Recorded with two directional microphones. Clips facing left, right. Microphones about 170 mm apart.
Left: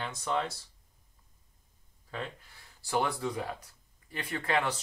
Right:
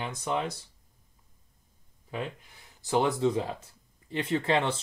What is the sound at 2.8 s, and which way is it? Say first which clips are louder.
Speech: right 6 dB; 20° right (ahead or behind).